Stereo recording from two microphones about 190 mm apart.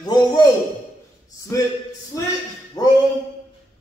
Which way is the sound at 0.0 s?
20° left (ahead or behind).